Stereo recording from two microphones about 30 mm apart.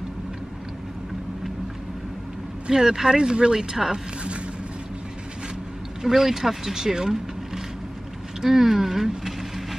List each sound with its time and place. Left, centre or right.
2.7 s speech: right
3.9 s a sound: right
6.0 s speech: centre